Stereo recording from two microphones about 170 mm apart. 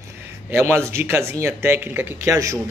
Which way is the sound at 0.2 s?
10° right (ahead or behind).